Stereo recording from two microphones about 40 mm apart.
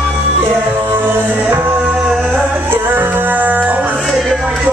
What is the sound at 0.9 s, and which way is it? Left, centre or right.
Music, right.